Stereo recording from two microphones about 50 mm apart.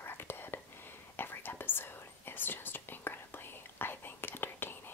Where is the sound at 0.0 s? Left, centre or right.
Left.